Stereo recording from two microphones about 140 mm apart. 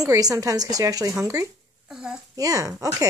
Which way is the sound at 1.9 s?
5° right (ahead or behind).